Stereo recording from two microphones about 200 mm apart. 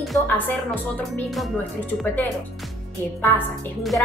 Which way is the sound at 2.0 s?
10° left (ahead or behind).